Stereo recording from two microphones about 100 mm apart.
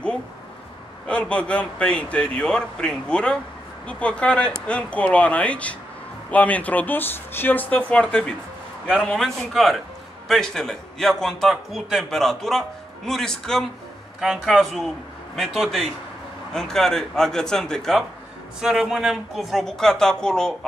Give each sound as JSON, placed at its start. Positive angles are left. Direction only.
{"t": 1.0, "sound": "a man's voice", "side_deg": 10}
{"t": 9.1, "sound": "a man's voice", "side_deg": 0}